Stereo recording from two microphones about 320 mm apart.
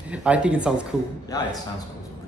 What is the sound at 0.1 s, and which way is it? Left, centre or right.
Speech, centre.